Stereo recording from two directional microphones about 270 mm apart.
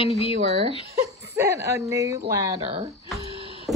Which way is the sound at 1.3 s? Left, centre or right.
Centre.